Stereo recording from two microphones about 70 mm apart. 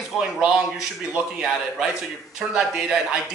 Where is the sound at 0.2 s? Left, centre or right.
Centre.